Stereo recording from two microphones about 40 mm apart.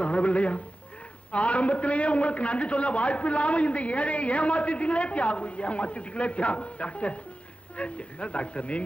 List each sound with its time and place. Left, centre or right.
0.0 s a man's voice: left